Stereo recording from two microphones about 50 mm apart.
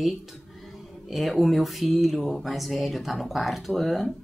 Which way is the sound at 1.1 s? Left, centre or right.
Centre.